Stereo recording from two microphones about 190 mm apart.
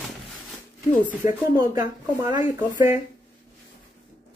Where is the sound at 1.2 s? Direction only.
15° right (ahead or behind).